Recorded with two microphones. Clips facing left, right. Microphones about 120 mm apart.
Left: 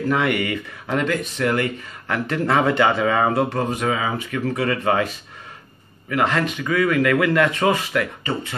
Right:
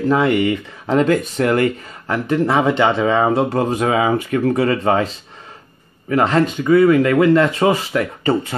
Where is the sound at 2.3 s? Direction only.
20° right (ahead or behind).